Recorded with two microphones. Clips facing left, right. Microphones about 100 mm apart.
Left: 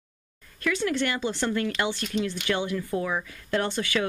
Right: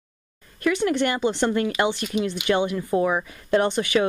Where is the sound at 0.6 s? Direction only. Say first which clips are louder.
Right 5 dB; 20° right (ahead or behind).